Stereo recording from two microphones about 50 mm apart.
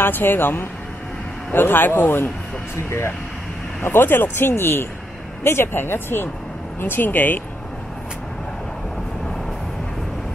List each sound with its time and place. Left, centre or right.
0.0 s speech: left
3.8 s speech: left